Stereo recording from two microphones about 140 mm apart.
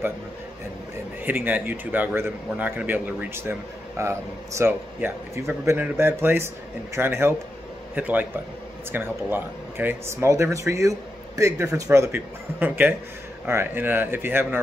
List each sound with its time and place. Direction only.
1.2 s a man's voice: 15° right (ahead or behind)